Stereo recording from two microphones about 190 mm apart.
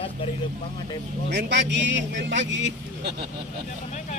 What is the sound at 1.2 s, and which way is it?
Speech, 65° right (ahead or behind).